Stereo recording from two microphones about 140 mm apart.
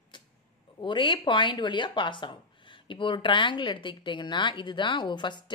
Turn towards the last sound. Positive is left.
turn(degrees=35)  # may be behind; listen again after turning